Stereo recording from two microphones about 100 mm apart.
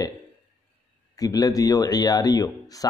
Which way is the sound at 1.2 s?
35° left (ahead or behind).